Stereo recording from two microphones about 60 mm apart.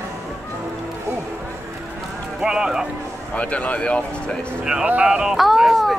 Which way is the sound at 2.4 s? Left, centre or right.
Centre.